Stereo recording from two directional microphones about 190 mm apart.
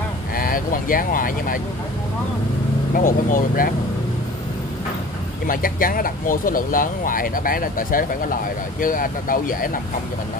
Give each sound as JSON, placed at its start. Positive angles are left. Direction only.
{"t": 0.4, "sound": "speech", "side_deg": 45}
{"t": 2.9, "sound": "speech", "side_deg": 45}
{"t": 5.5, "sound": "speech", "side_deg": 45}